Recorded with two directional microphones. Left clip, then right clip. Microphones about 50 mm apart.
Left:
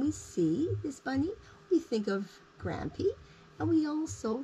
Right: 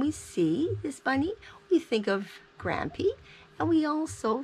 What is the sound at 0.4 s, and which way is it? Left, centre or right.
Speech, right.